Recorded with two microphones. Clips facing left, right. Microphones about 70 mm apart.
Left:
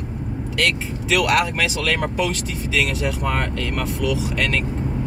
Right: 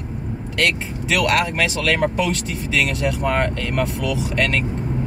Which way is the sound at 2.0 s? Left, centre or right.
Centre.